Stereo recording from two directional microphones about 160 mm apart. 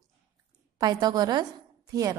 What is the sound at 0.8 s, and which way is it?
Speech, 25° right (ahead or behind).